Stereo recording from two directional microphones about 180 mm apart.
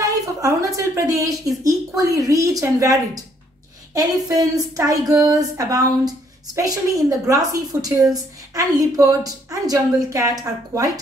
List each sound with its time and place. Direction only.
0.0 s speech: 20° right (ahead or behind)